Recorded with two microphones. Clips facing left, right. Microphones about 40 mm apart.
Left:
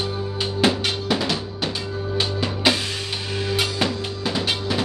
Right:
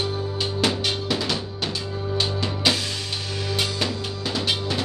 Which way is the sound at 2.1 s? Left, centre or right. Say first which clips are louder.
Left 1 dB; left.